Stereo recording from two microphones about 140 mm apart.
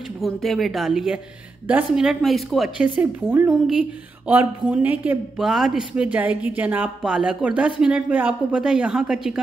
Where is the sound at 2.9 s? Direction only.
15° right (ahead or behind).